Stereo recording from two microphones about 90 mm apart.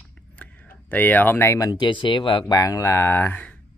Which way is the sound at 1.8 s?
65° left (ahead or behind).